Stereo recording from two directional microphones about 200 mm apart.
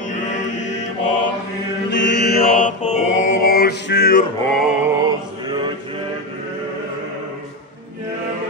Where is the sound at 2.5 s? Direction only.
40° left (ahead or behind).